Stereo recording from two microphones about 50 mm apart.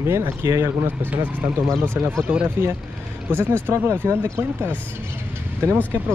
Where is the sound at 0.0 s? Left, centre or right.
Right.